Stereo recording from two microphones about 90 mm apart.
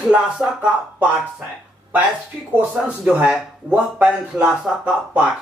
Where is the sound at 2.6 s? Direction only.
15° right (ahead or behind).